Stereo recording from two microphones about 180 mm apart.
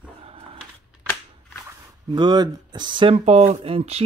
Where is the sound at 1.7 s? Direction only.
25° right (ahead or behind).